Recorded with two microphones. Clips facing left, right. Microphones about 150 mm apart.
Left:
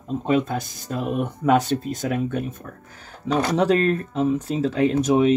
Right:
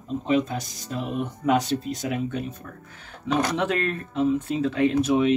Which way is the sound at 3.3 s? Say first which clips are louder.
Left 4 dB; 35° left (ahead or behind).